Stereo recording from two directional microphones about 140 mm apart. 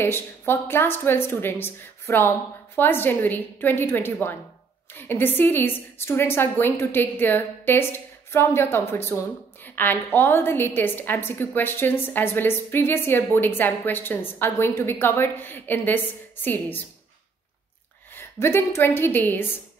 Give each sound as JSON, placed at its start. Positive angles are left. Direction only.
{"t": 0.0, "sound": "a woman's voice", "side_deg": 15}
{"t": 18.1, "sound": "a woman's voice", "side_deg": 15}